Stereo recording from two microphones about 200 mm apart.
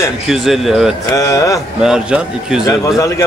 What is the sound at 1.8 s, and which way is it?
Speech, 5° right (ahead or behind).